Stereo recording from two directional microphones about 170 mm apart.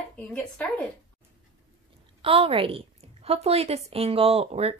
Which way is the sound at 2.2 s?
35° right (ahead or behind).